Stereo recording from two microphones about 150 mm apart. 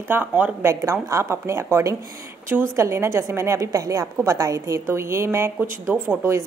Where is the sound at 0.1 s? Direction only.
10° right (ahead or behind).